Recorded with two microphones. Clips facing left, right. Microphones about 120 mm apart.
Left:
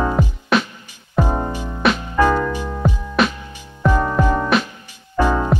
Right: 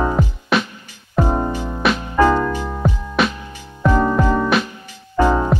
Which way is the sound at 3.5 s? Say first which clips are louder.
Right 1 dB; 15° left (ahead or behind).